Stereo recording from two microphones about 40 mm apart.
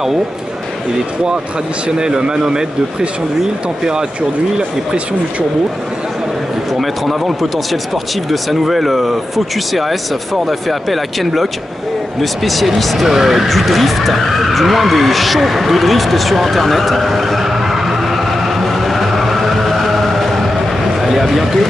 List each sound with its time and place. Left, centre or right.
2.0 s speech: centre
6.7 s speech: centre
13.5 s vehicle: centre
21.0 s a sound: centre